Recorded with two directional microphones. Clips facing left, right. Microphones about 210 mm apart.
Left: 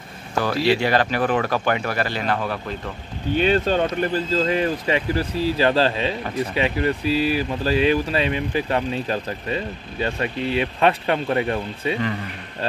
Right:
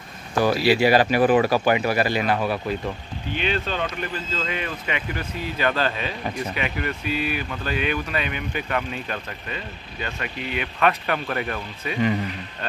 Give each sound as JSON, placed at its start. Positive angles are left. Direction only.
{"t": 0.4, "sound": "speech", "side_deg": -10}
{"t": 3.3, "sound": "speech", "side_deg": 40}